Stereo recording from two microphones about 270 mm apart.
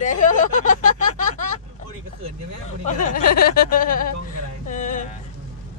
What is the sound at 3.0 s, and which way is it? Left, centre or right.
Speech, left.